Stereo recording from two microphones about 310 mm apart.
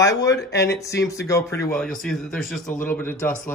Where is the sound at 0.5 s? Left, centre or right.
Centre.